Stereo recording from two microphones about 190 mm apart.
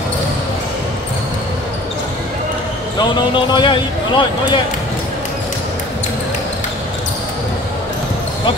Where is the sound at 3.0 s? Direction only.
25° left (ahead or behind).